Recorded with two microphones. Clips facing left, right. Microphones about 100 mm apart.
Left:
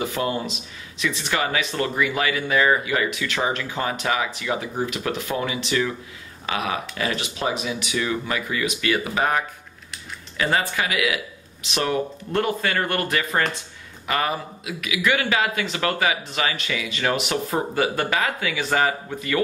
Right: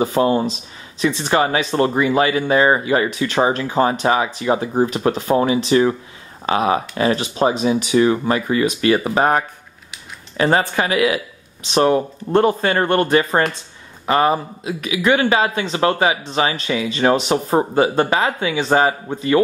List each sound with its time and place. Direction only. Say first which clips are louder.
0.0 s a man's voice: right 9 dB; 30° right (ahead or behind)